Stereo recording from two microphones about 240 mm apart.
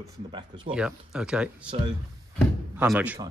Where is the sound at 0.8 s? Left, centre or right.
Centre.